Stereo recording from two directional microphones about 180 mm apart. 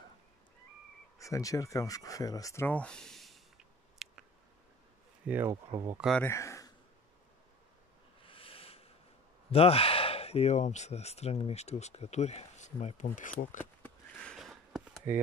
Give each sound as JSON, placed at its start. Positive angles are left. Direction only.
{"t": 1.1, "sound": "speech", "side_deg": 20}
{"t": 5.2, "sound": "speech", "side_deg": -10}
{"t": 5.7, "sound": "speech", "side_deg": -20}
{"t": 5.9, "sound": "speech", "side_deg": 0}
{"t": 6.2, "sound": "speech", "side_deg": 15}
{"t": 8.2, "sound": "a sound", "side_deg": 30}
{"t": 9.5, "sound": "speech", "side_deg": 30}
{"t": 13.8, "sound": "a sound", "side_deg": 5}